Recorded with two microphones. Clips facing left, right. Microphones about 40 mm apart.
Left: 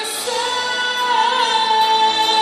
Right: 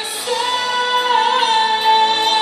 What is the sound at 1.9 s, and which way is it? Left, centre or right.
Music, right.